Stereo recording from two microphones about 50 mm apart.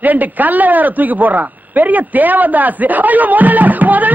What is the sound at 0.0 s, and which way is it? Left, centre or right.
A man's voice, right.